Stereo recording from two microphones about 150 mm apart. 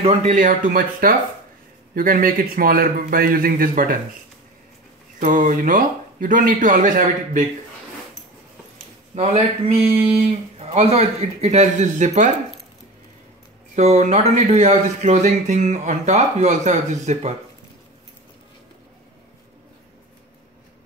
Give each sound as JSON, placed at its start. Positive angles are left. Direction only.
{"t": 0.0, "sound": "speech", "side_deg": -45}
{"t": 5.2, "sound": "speech", "side_deg": -60}
{"t": 9.1, "sound": "a man's voice", "side_deg": -45}
{"t": 13.7, "sound": "speech", "side_deg": -50}